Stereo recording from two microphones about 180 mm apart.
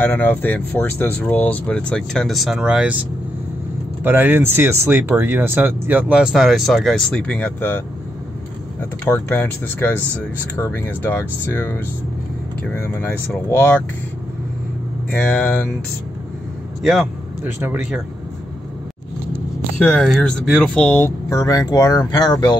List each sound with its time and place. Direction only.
0.0 s speech: 10° left (ahead or behind); by 3.0 s 5° right (ahead or behind)
4.0 s speech: 10° right (ahead or behind); by 7.8 s 10° left (ahead or behind)
9.0 s speech: 15° left (ahead or behind)
15.0 s speech: 5° left (ahead or behind)
17.6 s speech: 10° right (ahead or behind)
20.0 s speech: centre (ahead or behind); by 22.6 s 25° left (ahead or behind)